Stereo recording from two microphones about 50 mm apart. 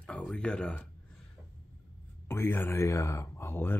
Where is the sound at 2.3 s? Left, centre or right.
Left.